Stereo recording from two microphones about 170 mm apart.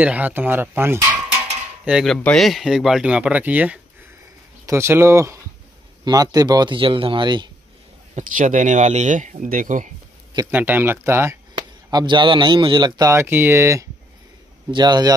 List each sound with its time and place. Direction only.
0.0 s speech: 10° right (ahead or behind)
1.9 s speech: centre (ahead or behind); by 7.4 s 25° right (ahead or behind)
8.2 s speech: 50° right (ahead or behind)
10.5 s speech: 10° right (ahead or behind)
11.9 s speech: 25° right (ahead or behind)